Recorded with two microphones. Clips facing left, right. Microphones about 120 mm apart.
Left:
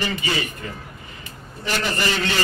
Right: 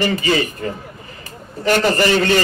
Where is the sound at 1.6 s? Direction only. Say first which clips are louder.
Right 9 dB; 50° right (ahead or behind).